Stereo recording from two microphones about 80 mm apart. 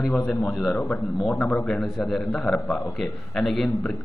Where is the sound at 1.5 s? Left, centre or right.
Centre.